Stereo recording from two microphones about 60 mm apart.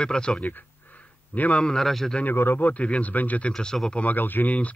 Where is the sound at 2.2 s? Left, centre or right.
Left.